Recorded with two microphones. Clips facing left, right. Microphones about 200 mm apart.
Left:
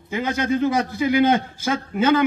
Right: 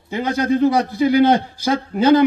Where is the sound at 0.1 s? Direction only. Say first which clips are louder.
Right 3 dB; 35° right (ahead or behind).